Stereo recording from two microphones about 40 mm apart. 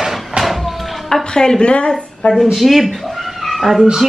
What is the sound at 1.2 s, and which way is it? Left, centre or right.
Speech, centre.